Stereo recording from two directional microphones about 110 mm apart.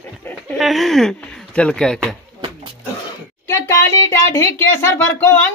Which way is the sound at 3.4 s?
25° left (ahead or behind).